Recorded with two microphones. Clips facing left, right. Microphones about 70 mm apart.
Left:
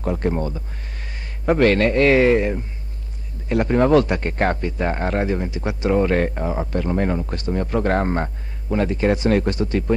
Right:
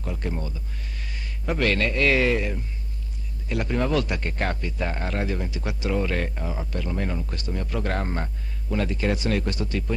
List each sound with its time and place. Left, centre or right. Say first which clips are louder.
0.0 s speech: left 9 dB; left